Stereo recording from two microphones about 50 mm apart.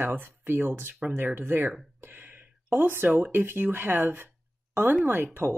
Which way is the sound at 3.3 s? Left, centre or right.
Right.